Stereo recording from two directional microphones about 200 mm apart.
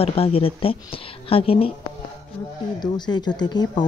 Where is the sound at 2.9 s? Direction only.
20° left (ahead or behind).